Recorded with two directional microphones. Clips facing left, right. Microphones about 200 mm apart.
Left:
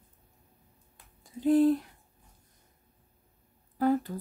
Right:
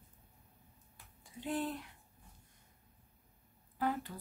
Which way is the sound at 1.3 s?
40° left (ahead or behind).